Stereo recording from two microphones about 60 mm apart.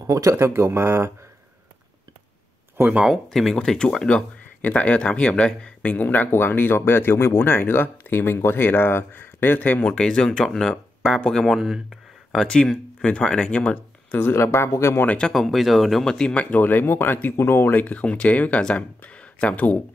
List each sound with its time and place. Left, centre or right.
0.0 s speech: right
3.1 s speech: centre
4.6 s speech: left
11.4 s speech: centre
12.3 s speech: centre
14.1 s speech: left
14.4 s speech: left
15.0 s speech: centre
15.3 s speech: centre
16.0 s speech: centre
16.3 s speech: left